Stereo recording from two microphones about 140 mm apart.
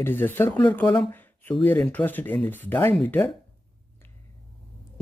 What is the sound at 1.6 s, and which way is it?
Speech, 15° left (ahead or behind).